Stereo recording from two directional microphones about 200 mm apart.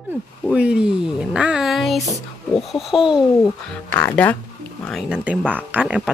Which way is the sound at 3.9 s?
10° left (ahead or behind).